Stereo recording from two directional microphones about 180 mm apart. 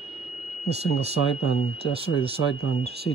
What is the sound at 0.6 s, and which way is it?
Speech, 35° right (ahead or behind).